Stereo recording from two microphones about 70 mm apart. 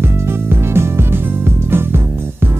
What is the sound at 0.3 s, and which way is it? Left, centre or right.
Music, right.